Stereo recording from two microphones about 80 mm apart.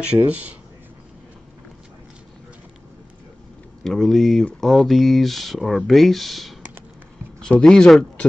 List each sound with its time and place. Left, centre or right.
0.0 s speech: centre
3.8 s speech: centre
7.6 s speech: centre